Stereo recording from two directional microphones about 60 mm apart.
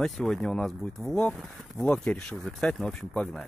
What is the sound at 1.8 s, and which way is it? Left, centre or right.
Speech, centre.